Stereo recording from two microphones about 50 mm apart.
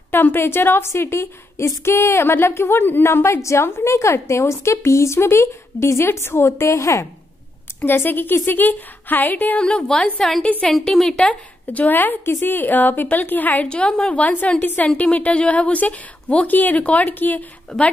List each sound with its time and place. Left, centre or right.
0.1 s a woman's voice: left
3.9 s speech: left
7.8 s a woman's voice: left
10.2 s a woman's voice: centre
11.2 s a woman's voice: left
13.7 s speech: centre; by 17.5 s left
17.6 s a woman's voice: left